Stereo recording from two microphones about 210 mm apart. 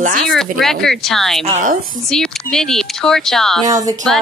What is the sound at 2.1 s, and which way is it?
Speech, centre (ahead or behind).